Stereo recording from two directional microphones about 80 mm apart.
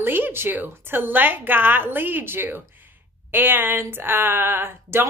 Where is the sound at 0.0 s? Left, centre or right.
Right.